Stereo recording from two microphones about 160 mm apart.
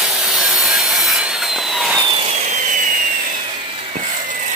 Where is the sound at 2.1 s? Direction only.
40° right (ahead or behind).